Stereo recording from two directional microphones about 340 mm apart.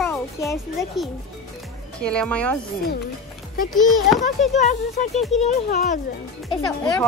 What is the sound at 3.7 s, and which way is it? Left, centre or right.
Speech, centre.